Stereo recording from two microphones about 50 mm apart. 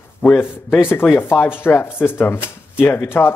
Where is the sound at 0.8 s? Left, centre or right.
Left.